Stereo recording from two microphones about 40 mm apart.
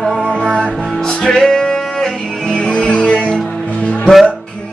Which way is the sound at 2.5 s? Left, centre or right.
Left.